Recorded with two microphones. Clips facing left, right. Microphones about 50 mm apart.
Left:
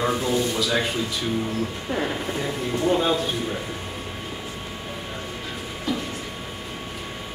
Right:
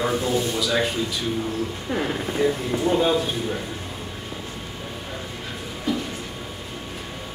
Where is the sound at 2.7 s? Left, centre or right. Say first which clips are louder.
Right 1 dB; right.